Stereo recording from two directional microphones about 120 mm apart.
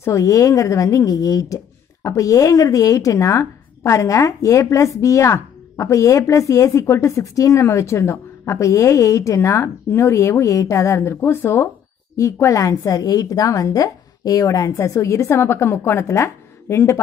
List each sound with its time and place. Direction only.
0.0 s a woman's voice: 25° left (ahead or behind)